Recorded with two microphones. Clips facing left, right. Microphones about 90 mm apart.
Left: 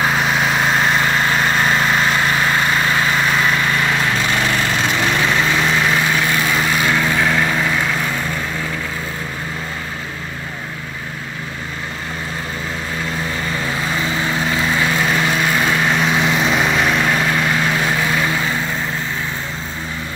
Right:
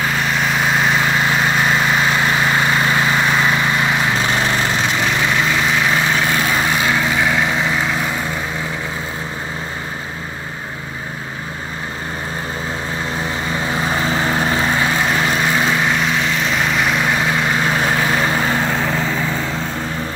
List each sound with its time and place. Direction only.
0.2 s vehicle: 5° left (ahead or behind); by 4.7 s 20° right (ahead or behind)
5.0 s vehicle: 10° right (ahead or behind)
6.5 s vehicle: 20° right (ahead or behind)
13.7 s vehicle: 30° right (ahead or behind); by 15.9 s 15° right (ahead or behind)
16.0 s vehicle: 10° left (ahead or behind); by 17.7 s 15° right (ahead or behind)
17.7 s vehicle: 30° right (ahead or behind)
18.4 s vehicle: 45° right (ahead or behind)